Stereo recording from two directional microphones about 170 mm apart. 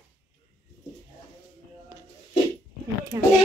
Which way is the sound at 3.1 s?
15° right (ahead or behind).